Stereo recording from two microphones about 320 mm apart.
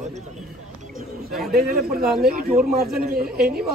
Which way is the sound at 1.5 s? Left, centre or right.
Right.